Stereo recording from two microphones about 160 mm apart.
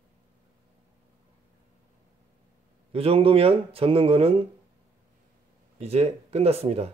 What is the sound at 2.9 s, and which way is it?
Speech, 35° right (ahead or behind).